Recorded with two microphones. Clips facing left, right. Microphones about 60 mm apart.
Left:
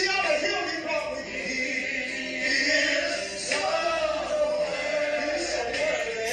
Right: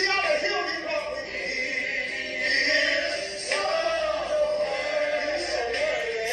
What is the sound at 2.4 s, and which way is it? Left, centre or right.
Music, right.